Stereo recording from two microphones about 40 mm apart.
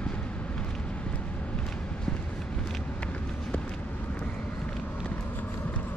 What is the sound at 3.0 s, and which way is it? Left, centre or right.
Vehicle, left.